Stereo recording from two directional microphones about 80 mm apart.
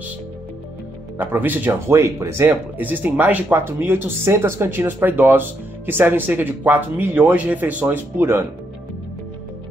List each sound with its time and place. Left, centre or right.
1.1 s speech: right
1.7 s speech: right
2.8 s speech: right
8.2 s speech: right